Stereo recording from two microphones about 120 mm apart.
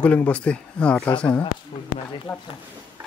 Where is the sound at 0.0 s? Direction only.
10° left (ahead or behind).